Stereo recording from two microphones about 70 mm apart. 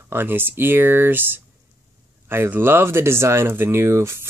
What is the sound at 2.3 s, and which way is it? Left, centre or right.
Speech, right.